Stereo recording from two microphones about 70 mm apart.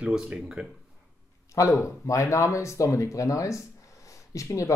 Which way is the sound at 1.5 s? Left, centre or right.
Left.